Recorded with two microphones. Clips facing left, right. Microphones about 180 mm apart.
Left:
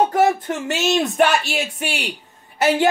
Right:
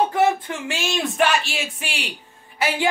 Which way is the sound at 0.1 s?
40° left (ahead or behind).